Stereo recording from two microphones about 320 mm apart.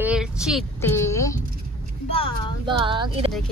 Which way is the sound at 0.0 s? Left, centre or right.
Centre.